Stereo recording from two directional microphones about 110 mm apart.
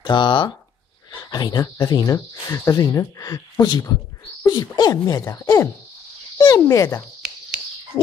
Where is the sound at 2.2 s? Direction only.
30° left (ahead or behind).